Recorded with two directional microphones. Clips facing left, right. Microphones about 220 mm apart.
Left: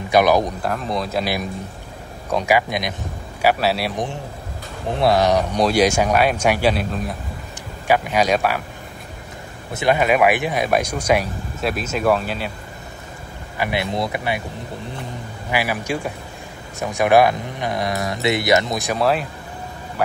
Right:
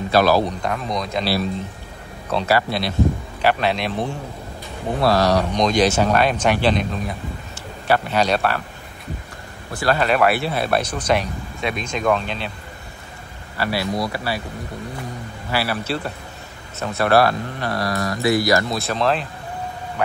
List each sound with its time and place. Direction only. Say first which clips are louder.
0.1 s speech: left 1 dB; 15° left (ahead or behind)
0.7 s speech: left 1 dB; 5° left (ahead or behind); by 5.6 s 20° left (ahead or behind)
5.6 s speech: left 1 dB; 10° left (ahead or behind)
7.9 s speech: left 1 dB; 10° left (ahead or behind)
9.7 s speech: left 2 dB; 20° left (ahead or behind)
13.6 s speech: even; 20° left (ahead or behind)
15.5 s speech: left 1 dB; 15° left (ahead or behind)